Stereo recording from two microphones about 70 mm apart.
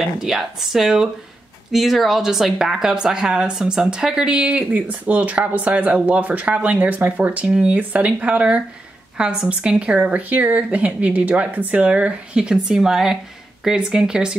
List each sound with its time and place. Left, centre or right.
0.2 s speech: centre
4.7 s speech: right